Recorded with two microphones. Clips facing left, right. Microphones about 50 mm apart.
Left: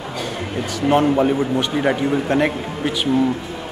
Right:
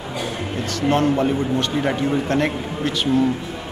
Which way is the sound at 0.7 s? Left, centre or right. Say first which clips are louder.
Left 3 dB; centre.